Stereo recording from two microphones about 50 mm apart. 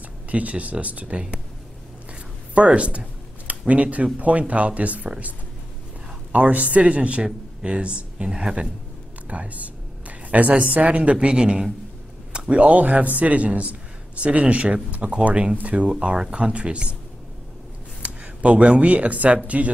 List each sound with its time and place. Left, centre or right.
0.3 s speech: right
2.5 s speech: right
6.3 s speech: right
9.3 s a woman's voice: right
15.9 s speech: centre
18.0 s speech: right